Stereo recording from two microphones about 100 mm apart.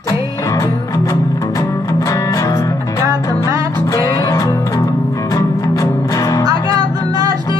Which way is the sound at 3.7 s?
35° left (ahead or behind).